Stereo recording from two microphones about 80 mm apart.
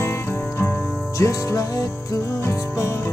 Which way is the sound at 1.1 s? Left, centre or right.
Left.